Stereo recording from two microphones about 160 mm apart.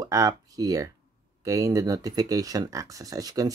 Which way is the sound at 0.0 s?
25° right (ahead or behind).